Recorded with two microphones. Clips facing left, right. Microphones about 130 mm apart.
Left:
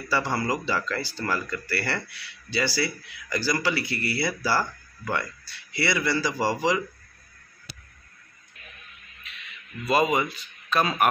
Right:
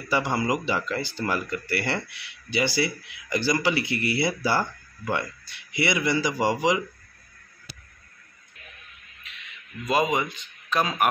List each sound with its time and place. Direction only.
0.1 s speech: 20° right (ahead or behind)
9.8 s a man's voice: 15° right (ahead or behind)